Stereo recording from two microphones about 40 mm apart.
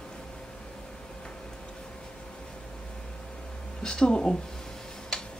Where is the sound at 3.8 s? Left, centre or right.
Left.